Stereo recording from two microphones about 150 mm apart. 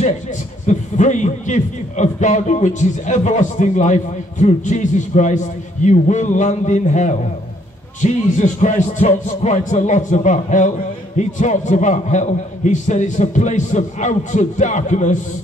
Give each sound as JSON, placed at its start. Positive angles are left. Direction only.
{"t": 0.7, "sound": "a man's voice", "side_deg": 55}